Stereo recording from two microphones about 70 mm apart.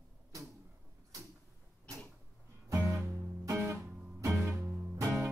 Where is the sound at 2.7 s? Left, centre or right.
Right.